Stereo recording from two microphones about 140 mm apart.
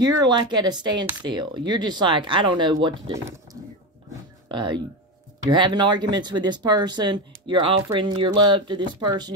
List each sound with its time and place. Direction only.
0.0 s speech: 30° right (ahead or behind)
4.5 s speech: 35° right (ahead or behind)